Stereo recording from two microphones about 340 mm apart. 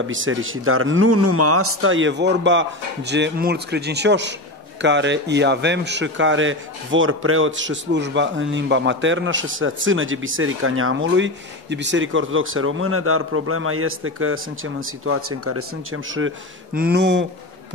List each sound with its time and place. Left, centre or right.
0.0 s a man's voice: right